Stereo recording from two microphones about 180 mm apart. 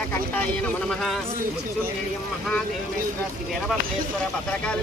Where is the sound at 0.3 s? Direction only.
5° left (ahead or behind).